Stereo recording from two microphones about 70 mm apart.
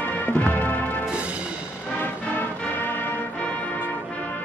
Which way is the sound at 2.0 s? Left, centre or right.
Left.